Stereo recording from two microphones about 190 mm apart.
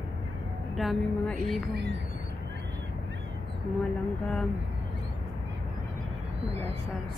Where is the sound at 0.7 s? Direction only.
Centre (ahead or behind).